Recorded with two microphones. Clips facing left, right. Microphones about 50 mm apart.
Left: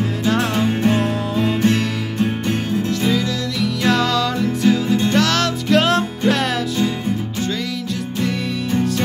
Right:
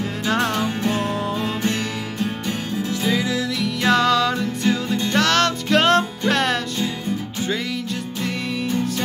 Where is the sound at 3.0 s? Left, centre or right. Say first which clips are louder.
Left 1 dB; centre.